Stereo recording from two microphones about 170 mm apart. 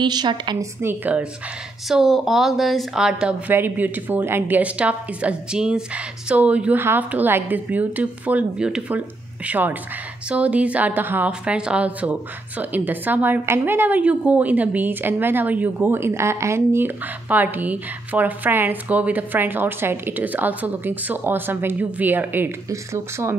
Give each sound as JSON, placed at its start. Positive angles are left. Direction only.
{"t": 0.0, "sound": "a woman's voice", "side_deg": -25}
{"t": 0.7, "sound": "a woman's voice", "side_deg": -10}
{"t": 1.9, "sound": "a woman's voice", "side_deg": 0}